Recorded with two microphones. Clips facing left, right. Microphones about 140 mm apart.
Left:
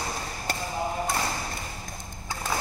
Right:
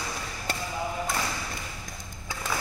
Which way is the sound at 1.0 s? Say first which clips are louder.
Left 2 dB; 35° left (ahead or behind).